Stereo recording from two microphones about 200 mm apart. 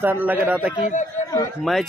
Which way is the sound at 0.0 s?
10° right (ahead or behind).